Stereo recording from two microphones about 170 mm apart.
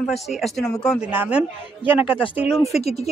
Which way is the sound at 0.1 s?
Centre (ahead or behind).